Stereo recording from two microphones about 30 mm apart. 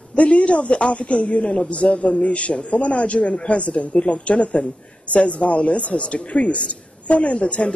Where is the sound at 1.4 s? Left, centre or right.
Left.